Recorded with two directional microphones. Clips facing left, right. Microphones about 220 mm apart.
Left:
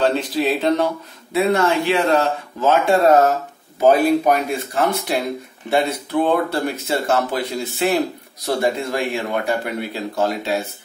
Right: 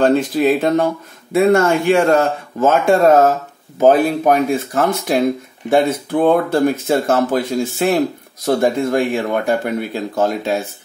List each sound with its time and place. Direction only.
0.0 s speech: 50° right (ahead or behind)